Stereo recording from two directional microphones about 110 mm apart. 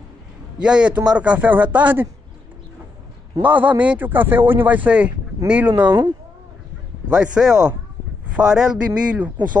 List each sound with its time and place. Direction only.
0.6 s speech: 10° right (ahead or behind)
3.4 s speech: 15° right (ahead or behind)
5.9 s speech: 45° right (ahead or behind)
7.1 s speech: 10° right (ahead or behind)